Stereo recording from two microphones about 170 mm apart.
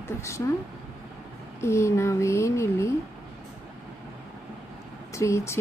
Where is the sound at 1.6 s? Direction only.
15° left (ahead or behind).